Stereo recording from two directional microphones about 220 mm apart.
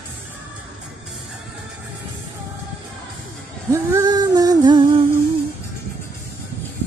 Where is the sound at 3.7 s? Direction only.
15° right (ahead or behind).